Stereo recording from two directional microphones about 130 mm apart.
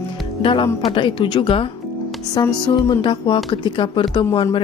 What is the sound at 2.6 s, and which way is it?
Speech, 40° left (ahead or behind).